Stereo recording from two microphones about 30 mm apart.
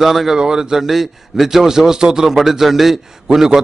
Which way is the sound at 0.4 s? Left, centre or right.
Right.